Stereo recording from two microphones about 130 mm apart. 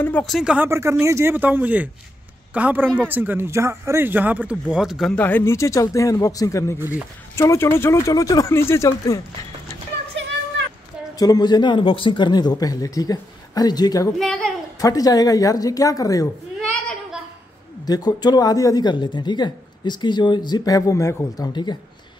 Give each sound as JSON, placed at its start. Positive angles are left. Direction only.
{"t": 0.2, "sound": "speech", "side_deg": 0}
{"t": 0.7, "sound": "speech", "side_deg": -20}
{"t": 5.1, "sound": "speech", "side_deg": 15}
{"t": 11.1, "sound": "speech", "side_deg": 30}
{"t": 14.1, "sound": "speech", "side_deg": 5}
{"t": 14.8, "sound": "speech", "side_deg": 30}
{"t": 16.6, "sound": "a sound", "side_deg": 5}
{"t": 17.8, "sound": "speech", "side_deg": 30}
{"t": 21.5, "sound": "speech", "side_deg": 35}